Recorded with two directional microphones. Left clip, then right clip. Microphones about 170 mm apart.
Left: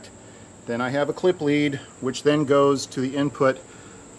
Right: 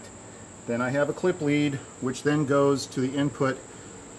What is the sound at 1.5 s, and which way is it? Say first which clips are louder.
Speech: left 3 dB; 20° left (ahead or behind).